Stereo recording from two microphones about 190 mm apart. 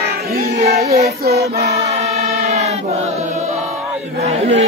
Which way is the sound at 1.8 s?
35° right (ahead or behind).